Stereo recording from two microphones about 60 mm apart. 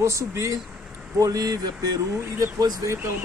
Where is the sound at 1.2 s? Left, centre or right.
Right.